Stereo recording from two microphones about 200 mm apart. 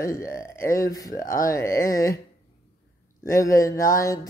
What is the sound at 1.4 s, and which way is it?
Speech, 15° left (ahead or behind).